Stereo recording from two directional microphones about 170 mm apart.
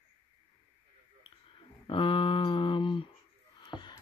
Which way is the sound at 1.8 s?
30° left (ahead or behind).